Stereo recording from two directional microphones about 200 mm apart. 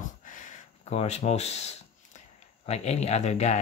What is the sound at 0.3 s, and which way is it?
Gasp, 40° left (ahead or behind).